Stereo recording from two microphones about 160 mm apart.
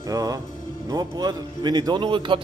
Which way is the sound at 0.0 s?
20° right (ahead or behind).